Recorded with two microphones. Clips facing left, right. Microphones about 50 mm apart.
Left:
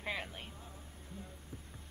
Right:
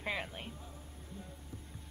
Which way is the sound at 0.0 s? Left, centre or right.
Centre.